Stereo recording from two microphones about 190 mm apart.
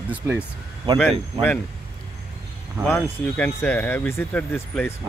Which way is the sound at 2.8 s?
5° left (ahead or behind).